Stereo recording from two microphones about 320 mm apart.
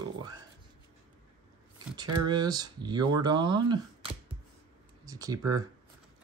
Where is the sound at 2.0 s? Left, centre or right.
Centre.